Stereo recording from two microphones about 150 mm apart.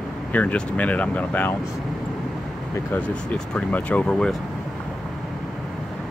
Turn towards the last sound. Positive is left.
turn(degrees=5)  # may be behind; listen again after turning